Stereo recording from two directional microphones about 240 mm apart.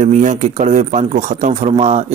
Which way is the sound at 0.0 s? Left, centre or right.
Right.